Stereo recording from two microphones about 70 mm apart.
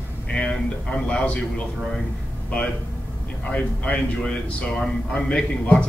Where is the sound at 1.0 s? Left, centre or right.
Centre.